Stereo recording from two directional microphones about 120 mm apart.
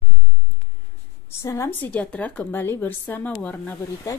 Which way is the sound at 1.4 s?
25° left (ahead or behind).